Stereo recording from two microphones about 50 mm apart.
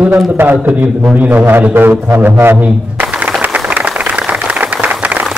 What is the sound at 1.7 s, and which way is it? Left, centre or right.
Music, right.